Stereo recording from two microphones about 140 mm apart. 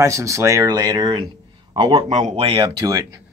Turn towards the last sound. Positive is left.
turn(degrees=-25)  # may be behind; listen again after turning